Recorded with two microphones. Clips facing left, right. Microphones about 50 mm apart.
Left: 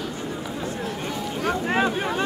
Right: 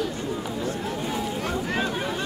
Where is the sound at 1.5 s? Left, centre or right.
Left.